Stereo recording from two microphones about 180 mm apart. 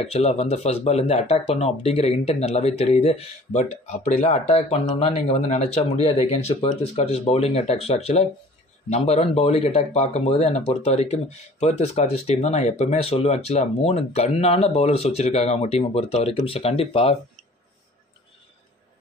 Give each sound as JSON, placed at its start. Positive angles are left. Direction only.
{"t": 0.0, "sound": "speech", "side_deg": 35}